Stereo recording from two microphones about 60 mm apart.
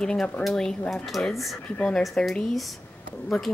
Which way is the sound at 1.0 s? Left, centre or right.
Centre.